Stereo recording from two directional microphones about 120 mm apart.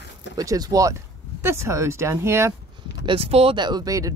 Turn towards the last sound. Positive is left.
turn(degrees=-30)  # may be behind; listen again after turning